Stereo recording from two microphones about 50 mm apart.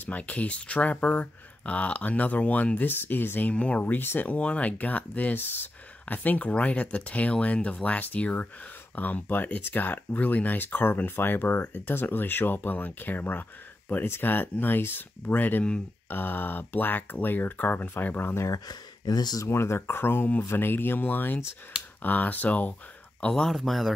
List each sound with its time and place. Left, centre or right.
0.0 s speech: left
3.8 s speech: left
4.3 s speech: left
5.4 s speech: left
14.0 s speech: left
18.3 s speech: left
19.4 s speech: left
23.5 s speech: centre